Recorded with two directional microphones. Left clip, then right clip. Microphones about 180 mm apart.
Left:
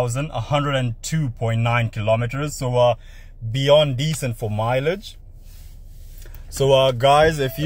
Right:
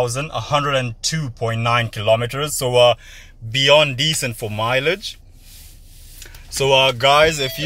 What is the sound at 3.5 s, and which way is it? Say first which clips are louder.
Speech: right 2 dB; 15° left (ahead or behind).